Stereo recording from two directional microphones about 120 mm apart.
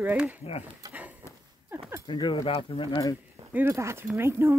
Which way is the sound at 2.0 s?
40° left (ahead or behind).